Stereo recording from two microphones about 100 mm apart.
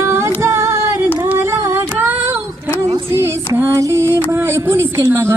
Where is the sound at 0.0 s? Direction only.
25° right (ahead or behind).